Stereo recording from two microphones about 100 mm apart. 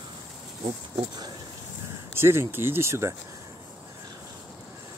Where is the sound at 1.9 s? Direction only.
25° right (ahead or behind).